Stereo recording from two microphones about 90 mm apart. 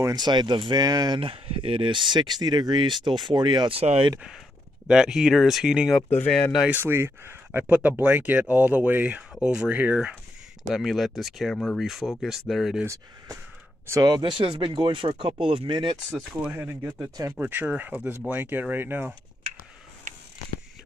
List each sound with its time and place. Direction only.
0.1 s speech: 55° right (ahead or behind)
1.2 s speech: 90° right; by 3.7 s 55° right (ahead or behind)
4.8 s speech: 10° right (ahead or behind)
6.7 s speech: 25° right (ahead or behind)
10.7 s speech: centre (ahead or behind)
12.8 s speech: 35° right (ahead or behind)
14.0 s speech: 55° right (ahead or behind)
16.5 s speech: 25° right (ahead or behind)